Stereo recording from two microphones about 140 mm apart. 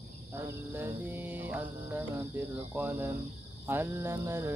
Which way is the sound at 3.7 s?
20° right (ahead or behind).